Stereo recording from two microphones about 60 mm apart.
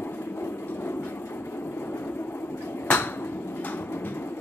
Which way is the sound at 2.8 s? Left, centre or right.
Left.